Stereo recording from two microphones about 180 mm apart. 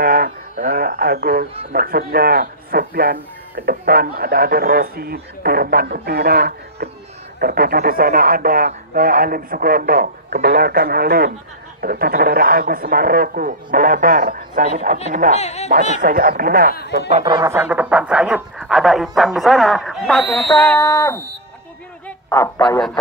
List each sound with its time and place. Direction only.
0.0 s a man's voice: 55° right (ahead or behind)
15.3 s speech: 35° left (ahead or behind)
16.0 s a man's voice: 50° right (ahead or behind)
17.2 s speech: 25° right (ahead or behind); by 22.8 s 20° left (ahead or behind)